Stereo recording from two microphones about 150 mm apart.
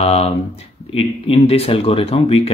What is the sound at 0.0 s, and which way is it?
Speech, 40° left (ahead or behind).